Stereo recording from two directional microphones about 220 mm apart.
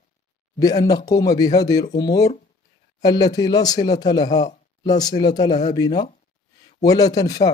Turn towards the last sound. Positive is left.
turn(degrees=15)  # may be behind; listen again after turning